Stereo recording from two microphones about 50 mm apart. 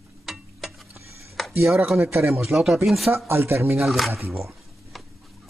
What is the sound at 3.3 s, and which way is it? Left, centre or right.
Speech, right.